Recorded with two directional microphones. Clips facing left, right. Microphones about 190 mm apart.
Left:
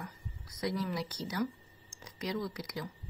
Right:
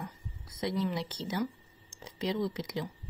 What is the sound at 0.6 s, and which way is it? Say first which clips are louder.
Speech: right 2 dB; 25° right (ahead or behind).